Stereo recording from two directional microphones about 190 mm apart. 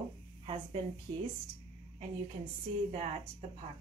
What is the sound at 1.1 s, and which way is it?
Speech, 25° right (ahead or behind).